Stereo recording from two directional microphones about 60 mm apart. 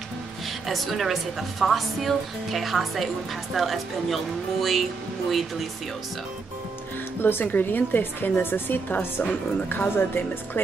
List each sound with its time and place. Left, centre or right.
0.7 s a woman's voice: centre
7.2 s a woman's voice: left